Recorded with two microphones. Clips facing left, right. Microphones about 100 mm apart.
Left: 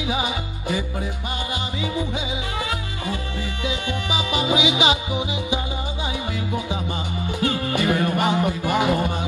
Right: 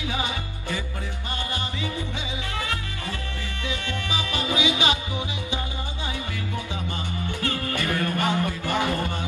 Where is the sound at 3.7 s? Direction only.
15° left (ahead or behind).